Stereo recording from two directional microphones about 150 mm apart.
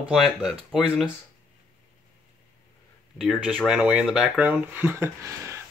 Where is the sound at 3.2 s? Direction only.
Centre (ahead or behind).